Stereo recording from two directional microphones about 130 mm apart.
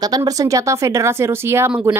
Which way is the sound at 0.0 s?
30° right (ahead or behind).